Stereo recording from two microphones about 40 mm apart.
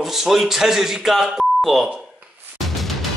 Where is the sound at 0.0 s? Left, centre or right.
Centre.